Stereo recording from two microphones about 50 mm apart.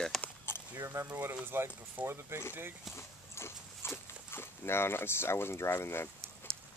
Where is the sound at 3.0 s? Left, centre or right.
Left.